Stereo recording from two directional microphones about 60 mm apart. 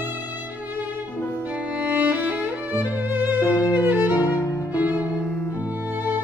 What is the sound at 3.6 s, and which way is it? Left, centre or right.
Violin, left.